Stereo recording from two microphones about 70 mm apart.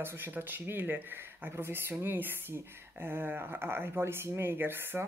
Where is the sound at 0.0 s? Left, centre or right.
Right.